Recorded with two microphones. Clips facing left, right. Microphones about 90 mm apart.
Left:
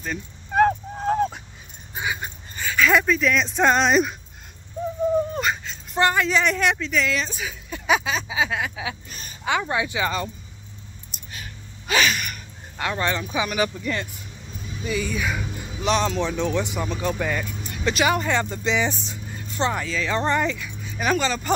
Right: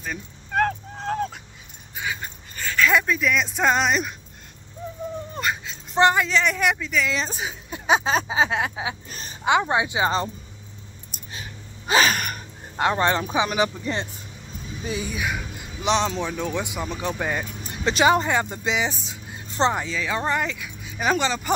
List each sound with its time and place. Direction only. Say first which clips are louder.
0.5 s a sound: left 4 dB; 10° left (ahead or behind)
2.0 s dog: left 2 dB; 15° left (ahead or behind)
2.6 s speech: left 1 dB; 5° left (ahead or behind)
5.3 s whimper: left 2 dB; centre (ahead or behind)
5.9 s speech: right 2 dB; 25° right (ahead or behind)
6.4 s speech: left 1 dB; 5° right (ahead or behind)
7.2 s speech: right 1 dB; 30° right (ahead or behind)
11.9 s a sound: right 2 dB; 40° right (ahead or behind)
14.9 s speech: left 3 dB; 15° right (ahead or behind)
15.2 s music: left 1 dB; 5° right (ahead or behind)
15.8 s speech: left 1 dB; 20° right (ahead or behind)
18.3 s speech: left 1 dB; 15° right (ahead or behind)
19.5 s speech: right 2 dB; 25° right (ahead or behind)